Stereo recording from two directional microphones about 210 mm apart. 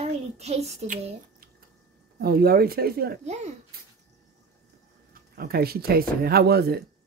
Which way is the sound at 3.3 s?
35° right (ahead or behind).